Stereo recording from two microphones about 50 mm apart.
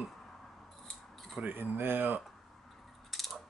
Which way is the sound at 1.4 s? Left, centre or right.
Right.